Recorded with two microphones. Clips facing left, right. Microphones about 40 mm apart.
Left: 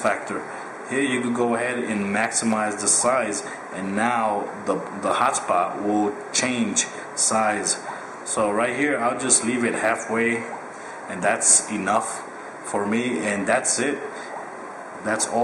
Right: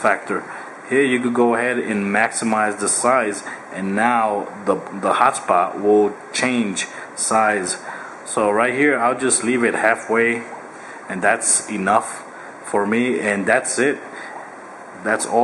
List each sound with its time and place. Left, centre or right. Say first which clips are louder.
0.0 s a man's voice: right 5 dB; centre
15.1 s speech: right 5 dB; centre